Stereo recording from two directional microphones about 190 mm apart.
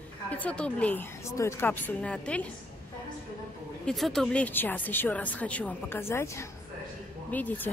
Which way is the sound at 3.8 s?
Centre (ahead or behind).